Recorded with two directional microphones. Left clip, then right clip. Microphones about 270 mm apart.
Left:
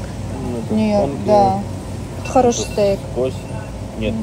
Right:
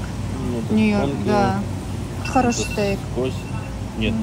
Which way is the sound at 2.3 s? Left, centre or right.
Right.